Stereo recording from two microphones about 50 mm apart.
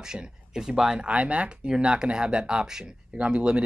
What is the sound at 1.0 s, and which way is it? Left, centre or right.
Speech, right.